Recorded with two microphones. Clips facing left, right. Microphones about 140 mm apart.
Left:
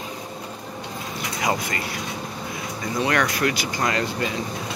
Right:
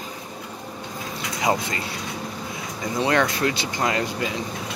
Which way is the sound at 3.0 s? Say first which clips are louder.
Right 1 dB; 25° right (ahead or behind).